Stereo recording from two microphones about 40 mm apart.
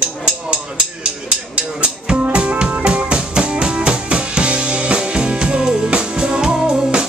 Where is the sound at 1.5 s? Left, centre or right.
Right.